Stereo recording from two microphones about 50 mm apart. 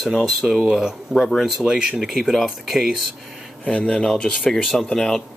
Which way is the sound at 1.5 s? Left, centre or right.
Centre.